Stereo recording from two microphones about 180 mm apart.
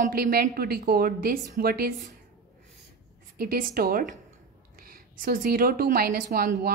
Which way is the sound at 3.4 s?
55° right (ahead or behind).